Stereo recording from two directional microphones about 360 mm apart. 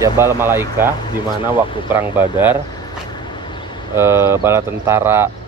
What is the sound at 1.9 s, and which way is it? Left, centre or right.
Speech, centre.